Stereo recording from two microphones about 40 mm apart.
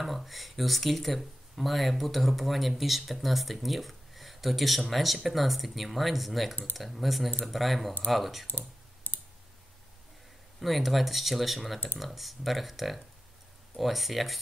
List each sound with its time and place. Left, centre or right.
0.0 s speech: centre
8.5 s clicking: left
10.6 s speech: centre